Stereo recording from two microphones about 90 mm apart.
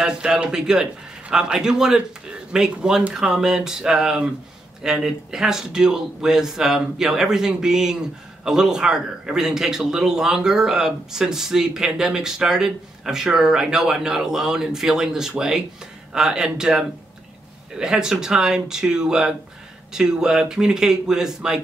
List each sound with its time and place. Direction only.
0.0 s a man's voice: 10° right (ahead or behind)